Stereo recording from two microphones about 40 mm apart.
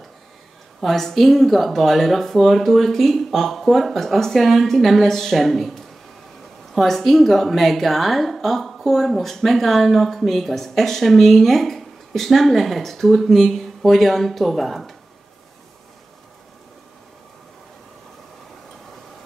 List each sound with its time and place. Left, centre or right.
0.7 s a woman's voice: centre